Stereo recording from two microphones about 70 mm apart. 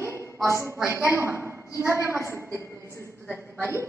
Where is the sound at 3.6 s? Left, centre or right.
Right.